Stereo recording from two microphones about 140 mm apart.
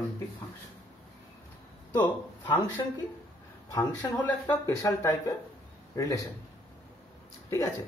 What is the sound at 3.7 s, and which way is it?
Speech, 30° left (ahead or behind).